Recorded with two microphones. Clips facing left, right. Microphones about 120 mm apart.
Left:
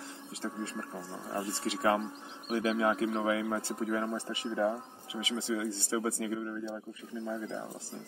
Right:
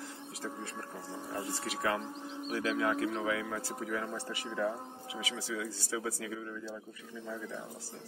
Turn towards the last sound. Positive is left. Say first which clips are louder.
# left 5 dB
turn(degrees=25)  # may be behind; listen again after turning